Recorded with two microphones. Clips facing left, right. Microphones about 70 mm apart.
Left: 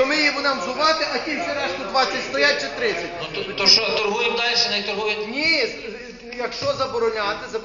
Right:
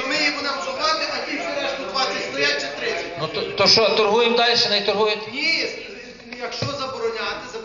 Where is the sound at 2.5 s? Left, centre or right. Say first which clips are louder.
Left 2 dB; left.